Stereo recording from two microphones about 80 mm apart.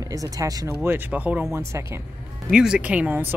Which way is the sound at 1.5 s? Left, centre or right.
Right.